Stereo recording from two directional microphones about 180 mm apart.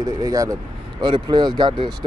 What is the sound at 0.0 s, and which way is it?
Speech, 20° right (ahead or behind).